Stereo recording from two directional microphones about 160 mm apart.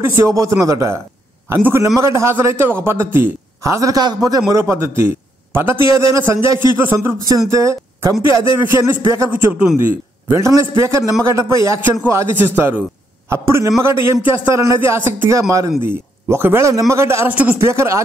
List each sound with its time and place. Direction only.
0.2 s a man's voice: 20° right (ahead or behind)